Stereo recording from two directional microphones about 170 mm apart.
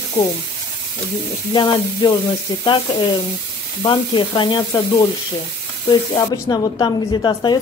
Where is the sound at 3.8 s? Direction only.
30° left (ahead or behind).